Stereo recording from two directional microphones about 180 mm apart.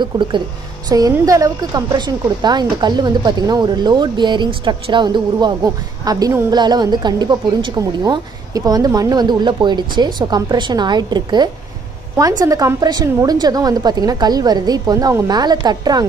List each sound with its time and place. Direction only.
0.0 s a woman's voice: 25° right (ahead or behind)